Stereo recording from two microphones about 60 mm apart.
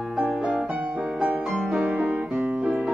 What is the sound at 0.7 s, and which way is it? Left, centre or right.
Music, right.